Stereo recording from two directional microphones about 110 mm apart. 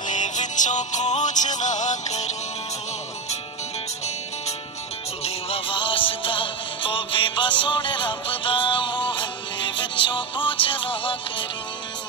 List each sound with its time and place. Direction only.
0.2 s music: 90° left
5.2 s music: 55° left (ahead or behind)